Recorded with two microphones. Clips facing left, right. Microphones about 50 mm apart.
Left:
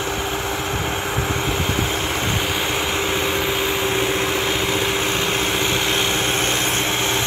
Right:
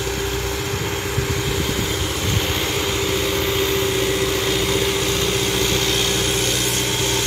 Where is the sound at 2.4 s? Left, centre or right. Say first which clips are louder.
Left 1 dB; centre.